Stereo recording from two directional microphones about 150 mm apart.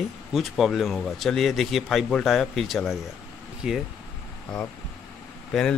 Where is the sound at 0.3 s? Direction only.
Centre (ahead or behind).